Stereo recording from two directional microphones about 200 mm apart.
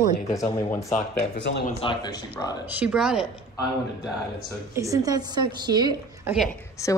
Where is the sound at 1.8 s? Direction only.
25° left (ahead or behind).